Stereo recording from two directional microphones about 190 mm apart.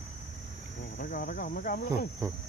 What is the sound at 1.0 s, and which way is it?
Speech, 50° left (ahead or behind).